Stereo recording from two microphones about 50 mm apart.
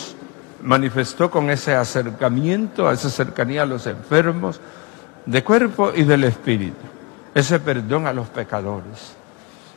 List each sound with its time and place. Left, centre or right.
0.7 s a man's voice: centre